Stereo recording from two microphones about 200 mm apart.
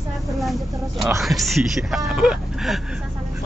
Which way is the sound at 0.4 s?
Centre (ahead or behind).